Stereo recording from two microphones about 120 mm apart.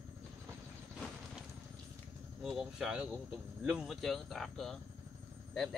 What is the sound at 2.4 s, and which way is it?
Speech, 5° right (ahead or behind).